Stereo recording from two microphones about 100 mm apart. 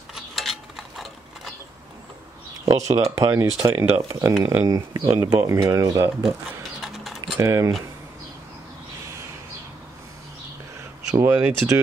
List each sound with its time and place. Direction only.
0.1 s a sound: centre (ahead or behind)
2.6 s speech: 30° right (ahead or behind)
4.6 s speech: 35° right (ahead or behind)
6.8 s typing: centre (ahead or behind)
7.3 s speech: 30° right (ahead or behind)
11.1 s speech: 30° right (ahead or behind)
11.3 s speech: 15° right (ahead or behind)